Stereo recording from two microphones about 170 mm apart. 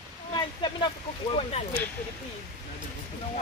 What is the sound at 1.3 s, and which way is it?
Speech, 35° left (ahead or behind).